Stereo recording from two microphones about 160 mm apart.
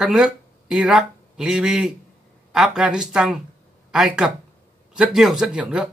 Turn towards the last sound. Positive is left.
turn(degrees=-5)  # may be behind; listen again after turning